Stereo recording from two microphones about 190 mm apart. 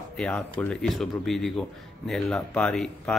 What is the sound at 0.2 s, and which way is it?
A man's voice, 5° left (ahead or behind).